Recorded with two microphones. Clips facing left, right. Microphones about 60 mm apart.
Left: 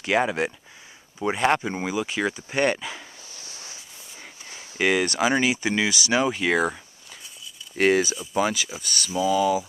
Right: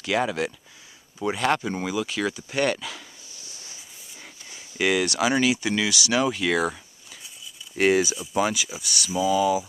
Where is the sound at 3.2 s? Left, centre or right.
Left.